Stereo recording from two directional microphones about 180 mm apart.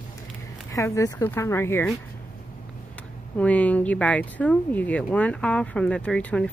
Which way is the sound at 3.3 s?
10° left (ahead or behind).